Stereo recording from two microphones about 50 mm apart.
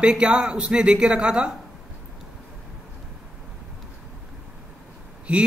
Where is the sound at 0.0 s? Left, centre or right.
Centre.